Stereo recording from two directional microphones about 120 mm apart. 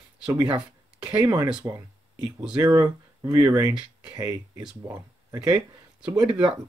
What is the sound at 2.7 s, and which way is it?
Speech, 25° right (ahead or behind).